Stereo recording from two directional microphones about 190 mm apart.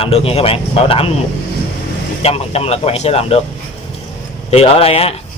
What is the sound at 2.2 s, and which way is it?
Speech, 30° left (ahead or behind).